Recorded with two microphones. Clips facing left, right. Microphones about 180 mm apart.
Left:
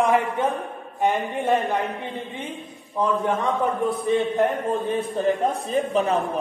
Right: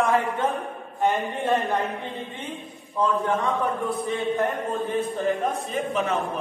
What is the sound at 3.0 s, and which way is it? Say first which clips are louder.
Speech: left 1 dB; 20° left (ahead or behind).